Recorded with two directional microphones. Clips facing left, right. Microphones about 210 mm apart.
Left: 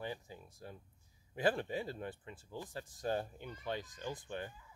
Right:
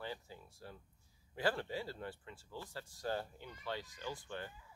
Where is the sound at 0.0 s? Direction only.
15° left (ahead or behind).